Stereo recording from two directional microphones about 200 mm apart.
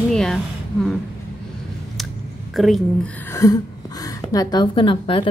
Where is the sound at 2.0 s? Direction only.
Centre (ahead or behind).